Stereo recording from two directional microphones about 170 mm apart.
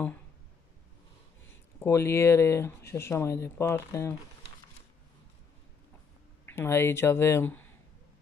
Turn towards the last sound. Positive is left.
turn(degrees=10)  # may be behind; listen again after turning